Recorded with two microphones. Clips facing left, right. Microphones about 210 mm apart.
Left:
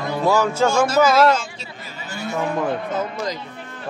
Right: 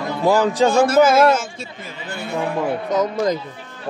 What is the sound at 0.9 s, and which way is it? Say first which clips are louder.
Speech: right 2 dB; 50° right (ahead or behind).